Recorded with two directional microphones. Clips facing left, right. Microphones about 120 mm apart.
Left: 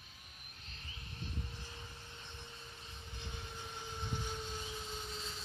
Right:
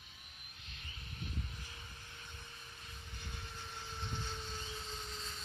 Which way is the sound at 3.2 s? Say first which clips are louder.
Left 2 dB; 20° left (ahead or behind).